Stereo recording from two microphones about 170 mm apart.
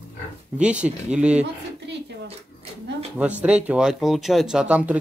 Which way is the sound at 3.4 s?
10° right (ahead or behind).